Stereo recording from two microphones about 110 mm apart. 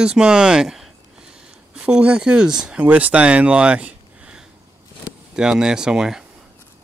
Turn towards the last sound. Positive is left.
turn(degrees=-5)  # may be behind; listen again after turning